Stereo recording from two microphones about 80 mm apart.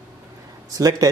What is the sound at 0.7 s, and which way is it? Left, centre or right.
Speech, right.